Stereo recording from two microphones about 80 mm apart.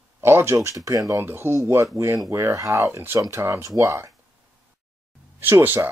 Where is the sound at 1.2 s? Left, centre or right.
Right.